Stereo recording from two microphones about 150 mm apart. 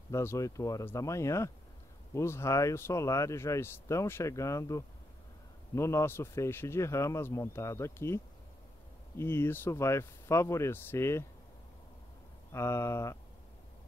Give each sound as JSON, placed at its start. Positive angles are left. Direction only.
{"t": 0.1, "sound": "speech", "side_deg": 20}
{"t": 9.2, "sound": "speech", "side_deg": 15}
{"t": 12.5, "sound": "speech", "side_deg": 15}